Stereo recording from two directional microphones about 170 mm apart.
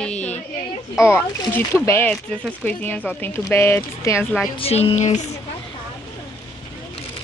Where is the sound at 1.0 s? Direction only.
15° left (ahead or behind).